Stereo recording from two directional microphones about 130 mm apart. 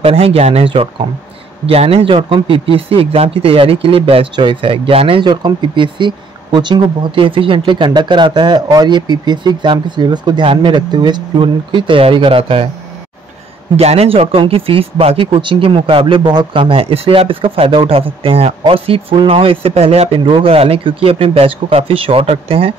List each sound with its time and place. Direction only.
0.0 s speech: 45° right (ahead or behind)
13.7 s speech: 50° right (ahead or behind)